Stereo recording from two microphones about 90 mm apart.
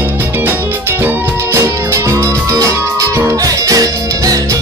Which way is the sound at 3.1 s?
30° right (ahead or behind).